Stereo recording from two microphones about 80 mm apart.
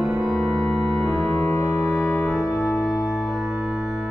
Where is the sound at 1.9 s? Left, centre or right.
Centre.